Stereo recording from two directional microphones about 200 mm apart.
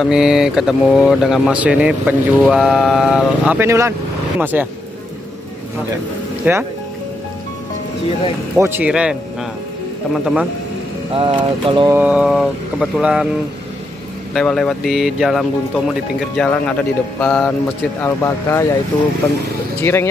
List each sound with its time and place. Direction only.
0.0 s speech: 5° right (ahead or behind)
6.5 s speech: 10° right (ahead or behind)
8.5 s speech: 10° right (ahead or behind)
10.1 s speech: 5° right (ahead or behind)
11.1 s speech: 25° right (ahead or behind)
11.9 s speech: 5° right (ahead or behind)
14.3 s a man's voice: 5° left (ahead or behind)
19.8 s a man's voice: 10° left (ahead or behind)